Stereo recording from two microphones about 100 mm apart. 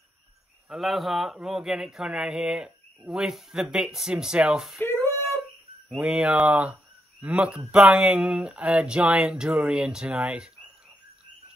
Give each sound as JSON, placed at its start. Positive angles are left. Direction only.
{"t": 0.7, "sound": "speech", "side_deg": 0}
{"t": 4.8, "sound": "a sound", "side_deg": 25}
{"t": 5.9, "sound": "speech", "side_deg": -10}